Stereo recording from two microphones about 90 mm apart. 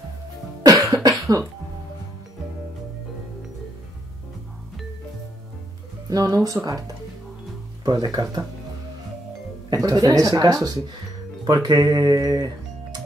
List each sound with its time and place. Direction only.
0.7 s cough: 40° right (ahead or behind)
6.0 s speech: 40° right (ahead or behind)
7.8 s speech: 45° right (ahead or behind)
9.8 s speech: 45° right (ahead or behind)